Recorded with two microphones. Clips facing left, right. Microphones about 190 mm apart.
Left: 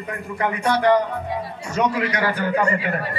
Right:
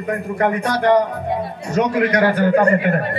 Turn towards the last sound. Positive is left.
turn(degrees=-55)  # may be behind; listen again after turning